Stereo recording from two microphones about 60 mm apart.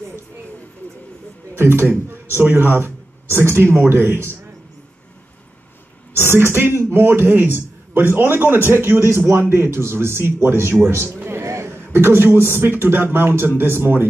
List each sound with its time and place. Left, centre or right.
1.5 s speech: right
6.1 s a man's voice: right
11.4 s a sound: right
12.4 s speech: right